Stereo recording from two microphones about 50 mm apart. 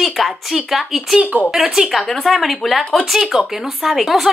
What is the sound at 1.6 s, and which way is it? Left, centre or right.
Speech, centre.